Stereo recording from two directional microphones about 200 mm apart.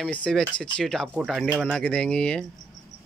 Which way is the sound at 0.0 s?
5° left (ahead or behind).